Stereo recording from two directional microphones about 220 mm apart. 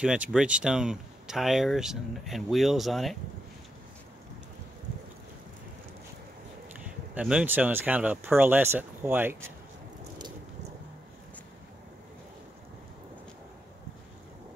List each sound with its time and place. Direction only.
0.0 s speech: 5° right (ahead or behind)
7.2 s speech: 5° right (ahead or behind)